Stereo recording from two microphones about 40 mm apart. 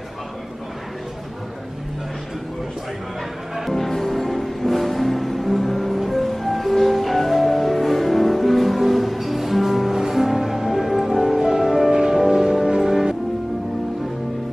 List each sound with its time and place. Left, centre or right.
3.7 s music: centre